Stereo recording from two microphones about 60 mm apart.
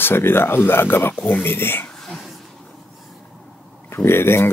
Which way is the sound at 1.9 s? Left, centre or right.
Centre.